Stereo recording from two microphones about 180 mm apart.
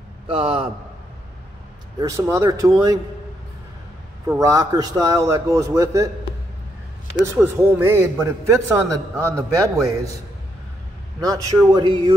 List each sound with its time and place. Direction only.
0.3 s a man's voice: 30° right (ahead or behind)
2.0 s a man's voice: 15° right (ahead or behind)
4.3 s a man's voice: 20° right (ahead or behind)
7.2 s a man's voice: 10° right (ahead or behind)
11.1 s a man's voice: 20° right (ahead or behind)